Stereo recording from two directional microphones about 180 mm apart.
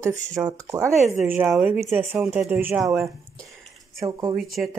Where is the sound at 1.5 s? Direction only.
5° right (ahead or behind).